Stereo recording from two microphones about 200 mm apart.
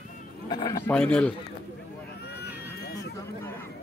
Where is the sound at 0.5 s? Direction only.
20° left (ahead or behind).